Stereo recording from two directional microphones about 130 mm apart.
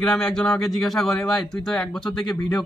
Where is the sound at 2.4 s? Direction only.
30° left (ahead or behind).